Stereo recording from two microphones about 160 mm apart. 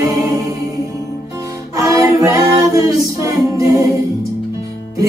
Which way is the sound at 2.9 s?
20° right (ahead or behind).